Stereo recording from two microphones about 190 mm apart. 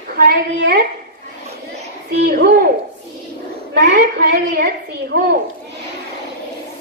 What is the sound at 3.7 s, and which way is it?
A woman's voice, 65° right (ahead or behind).